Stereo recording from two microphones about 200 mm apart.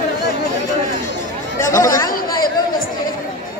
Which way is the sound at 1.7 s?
15° left (ahead or behind).